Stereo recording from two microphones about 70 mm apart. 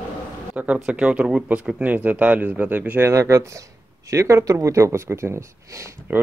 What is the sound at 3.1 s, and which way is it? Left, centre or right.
Speech, right.